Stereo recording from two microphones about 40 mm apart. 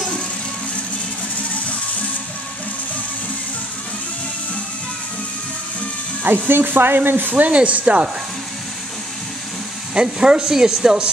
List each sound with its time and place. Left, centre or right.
6.2 s speech: right
7.3 s a woman's voice: right
9.9 s speech: right